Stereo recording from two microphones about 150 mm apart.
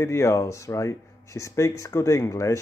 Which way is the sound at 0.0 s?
20° left (ahead or behind).